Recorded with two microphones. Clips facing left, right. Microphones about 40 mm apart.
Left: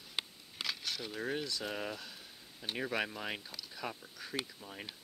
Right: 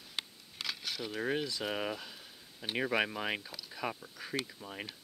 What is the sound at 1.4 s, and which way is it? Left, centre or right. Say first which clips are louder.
Speech: right 3 dB; centre.